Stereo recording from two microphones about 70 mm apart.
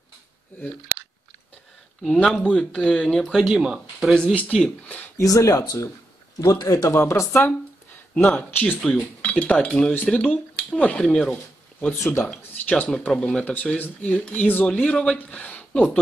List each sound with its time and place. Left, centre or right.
2.4 s speech: centre
3.3 s speech: centre
4.1 s speech: centre
5.1 s speech: left
6.9 s speech: left
8.3 s speech: left
10.0 s speech: centre
10.3 s speech: centre
11.9 s speech: left
12.5 s speech: left